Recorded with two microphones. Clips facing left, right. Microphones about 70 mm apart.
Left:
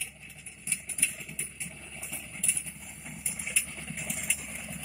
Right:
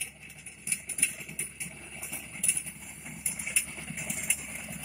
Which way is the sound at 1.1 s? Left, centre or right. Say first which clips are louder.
Even; right.